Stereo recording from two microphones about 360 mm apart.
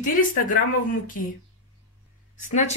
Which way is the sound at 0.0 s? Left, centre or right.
Left.